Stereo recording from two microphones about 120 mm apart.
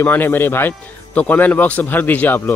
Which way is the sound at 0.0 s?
15° left (ahead or behind).